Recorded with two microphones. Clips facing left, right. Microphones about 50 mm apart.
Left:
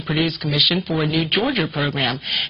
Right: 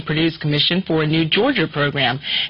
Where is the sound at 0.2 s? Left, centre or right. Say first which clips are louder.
Right 4 dB; right.